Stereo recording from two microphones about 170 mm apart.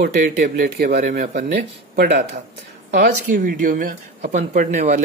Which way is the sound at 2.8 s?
50° right (ahead or behind).